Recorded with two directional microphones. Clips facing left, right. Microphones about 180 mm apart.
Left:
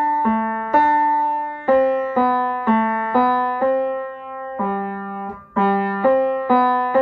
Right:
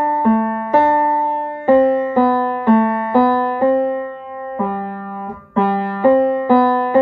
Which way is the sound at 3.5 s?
30° right (ahead or behind).